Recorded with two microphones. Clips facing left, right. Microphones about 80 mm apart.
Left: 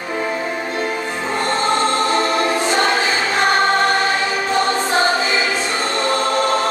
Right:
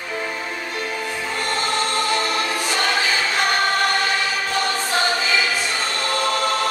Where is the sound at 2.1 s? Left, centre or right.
Left.